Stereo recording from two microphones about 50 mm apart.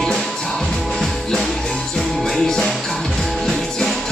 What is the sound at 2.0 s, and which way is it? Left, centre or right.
Music, centre.